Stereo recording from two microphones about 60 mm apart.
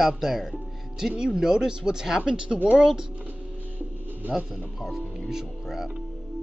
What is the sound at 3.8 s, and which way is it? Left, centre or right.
Music, right.